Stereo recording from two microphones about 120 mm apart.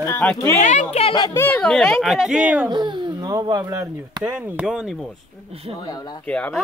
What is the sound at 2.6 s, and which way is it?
Speech, 40° right (ahead or behind).